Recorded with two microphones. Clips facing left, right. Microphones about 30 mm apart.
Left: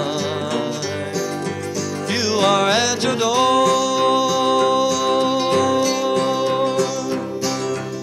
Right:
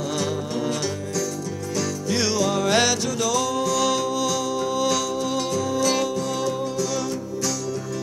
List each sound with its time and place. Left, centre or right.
2.4 s music: left
3.2 s music: left
4.5 s music: left
6.4 s music: left